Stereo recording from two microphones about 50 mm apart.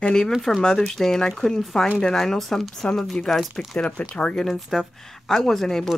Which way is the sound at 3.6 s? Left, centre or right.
Centre.